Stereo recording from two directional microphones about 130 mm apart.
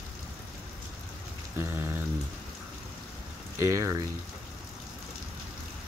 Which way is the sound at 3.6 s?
25° right (ahead or behind).